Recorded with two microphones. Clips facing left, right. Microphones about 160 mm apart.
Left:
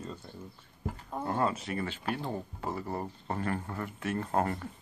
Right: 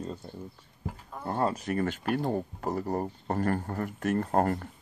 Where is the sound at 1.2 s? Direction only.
35° right (ahead or behind).